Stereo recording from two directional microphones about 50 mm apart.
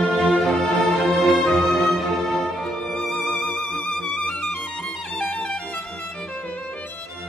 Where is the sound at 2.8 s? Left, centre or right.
Centre.